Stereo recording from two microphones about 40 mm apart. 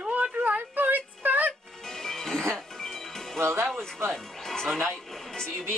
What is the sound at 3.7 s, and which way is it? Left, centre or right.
Speech, right.